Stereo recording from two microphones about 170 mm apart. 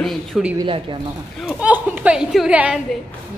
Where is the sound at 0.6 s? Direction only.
30° right (ahead or behind).